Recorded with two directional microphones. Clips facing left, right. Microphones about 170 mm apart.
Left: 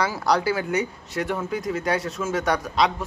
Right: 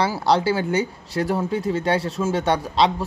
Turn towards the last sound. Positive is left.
turn(degrees=-30)  # may be behind; listen again after turning